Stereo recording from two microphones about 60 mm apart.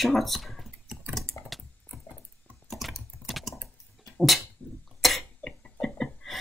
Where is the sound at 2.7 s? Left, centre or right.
Centre.